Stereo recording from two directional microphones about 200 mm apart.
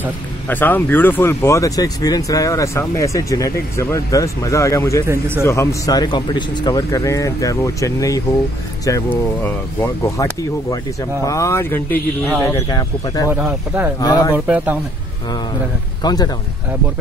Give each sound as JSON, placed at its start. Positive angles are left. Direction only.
{"t": 0.5, "sound": "speech", "side_deg": 10}
{"t": 5.0, "sound": "speech", "side_deg": -15}
{"t": 5.4, "sound": "speech", "side_deg": 15}
{"t": 13.3, "sound": "speech", "side_deg": -5}
{"t": 13.9, "sound": "speech", "side_deg": 20}
{"t": 14.3, "sound": "speech", "side_deg": -10}
{"t": 16.0, "sound": "speech", "side_deg": 20}